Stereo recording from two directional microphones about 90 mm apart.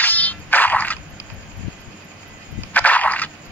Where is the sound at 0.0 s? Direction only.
20° left (ahead or behind).